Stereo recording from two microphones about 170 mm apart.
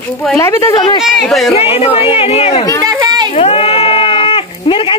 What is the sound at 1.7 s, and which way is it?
Speech, 35° left (ahead or behind).